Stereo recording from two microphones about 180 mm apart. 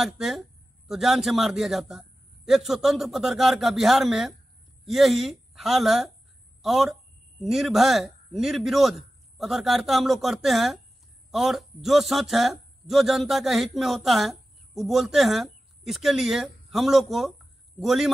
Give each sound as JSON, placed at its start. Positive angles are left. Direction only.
{"t": 0.0, "sound": "a man's voice", "side_deg": 0}